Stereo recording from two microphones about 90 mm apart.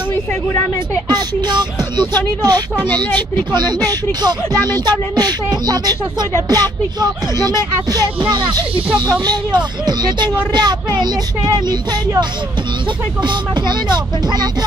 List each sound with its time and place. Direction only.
1.0 s speech: 55° right (ahead or behind)
13.2 s speech: 55° right (ahead or behind)